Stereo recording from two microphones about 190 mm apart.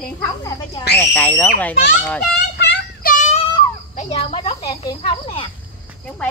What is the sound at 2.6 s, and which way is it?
Child singing, 55° left (ahead or behind).